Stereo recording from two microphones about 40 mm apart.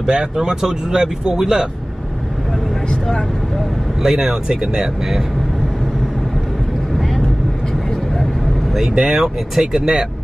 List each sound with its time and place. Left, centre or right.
0.0 s speech: centre
4.0 s speech: centre
8.7 s speech: centre